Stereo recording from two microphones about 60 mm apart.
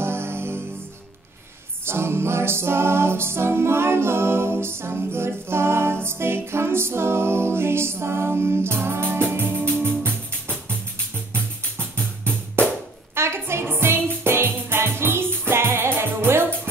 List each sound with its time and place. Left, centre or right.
0.0 s music: right
1.9 s music: right
12.0 s music: centre
13.1 s music: right